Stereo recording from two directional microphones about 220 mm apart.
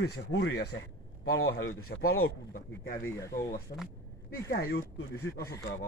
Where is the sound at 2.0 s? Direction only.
70° left (ahead or behind).